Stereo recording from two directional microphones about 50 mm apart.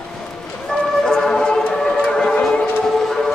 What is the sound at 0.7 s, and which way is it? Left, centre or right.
Music, centre.